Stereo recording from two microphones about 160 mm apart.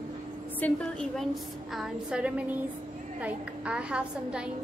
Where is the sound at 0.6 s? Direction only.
10° left (ahead or behind).